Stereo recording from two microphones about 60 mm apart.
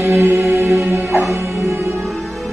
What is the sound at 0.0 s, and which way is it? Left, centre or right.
Music, right.